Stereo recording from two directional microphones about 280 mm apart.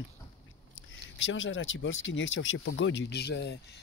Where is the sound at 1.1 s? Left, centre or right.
Left.